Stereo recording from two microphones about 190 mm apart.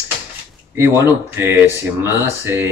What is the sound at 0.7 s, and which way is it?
Speech, 10° right (ahead or behind).